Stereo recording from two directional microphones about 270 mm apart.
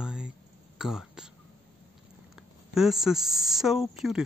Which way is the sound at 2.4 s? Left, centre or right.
Centre.